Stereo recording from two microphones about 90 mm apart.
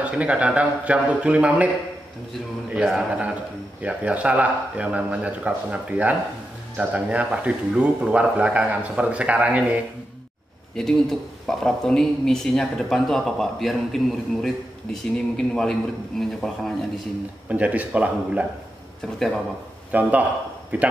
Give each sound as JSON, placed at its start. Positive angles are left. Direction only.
{"t": 0.0, "sound": "a man's voice", "side_deg": -15}
{"t": 2.8, "sound": "a man's voice", "side_deg": -5}
{"t": 10.8, "sound": "speech", "side_deg": 5}
{"t": 17.5, "sound": "a man's voice", "side_deg": -15}
{"t": 19.9, "sound": "a man's voice", "side_deg": -15}